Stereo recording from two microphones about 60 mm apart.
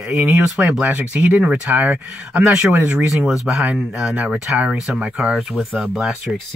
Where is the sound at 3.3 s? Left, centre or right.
Centre.